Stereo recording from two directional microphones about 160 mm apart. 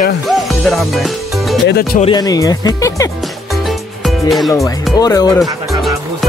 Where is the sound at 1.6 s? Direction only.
75° left (ahead or behind).